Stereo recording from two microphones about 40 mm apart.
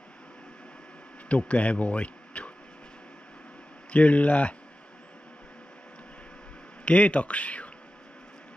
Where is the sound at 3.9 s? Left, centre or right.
Left.